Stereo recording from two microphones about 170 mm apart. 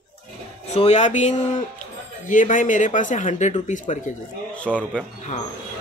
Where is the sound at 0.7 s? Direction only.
40° left (ahead or behind).